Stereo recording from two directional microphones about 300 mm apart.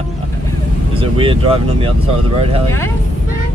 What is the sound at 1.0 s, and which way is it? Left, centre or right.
Speech, centre.